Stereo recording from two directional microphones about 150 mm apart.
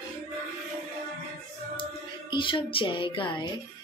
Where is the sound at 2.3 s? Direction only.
35° left (ahead or behind).